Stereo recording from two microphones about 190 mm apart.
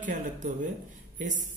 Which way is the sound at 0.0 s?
40° right (ahead or behind).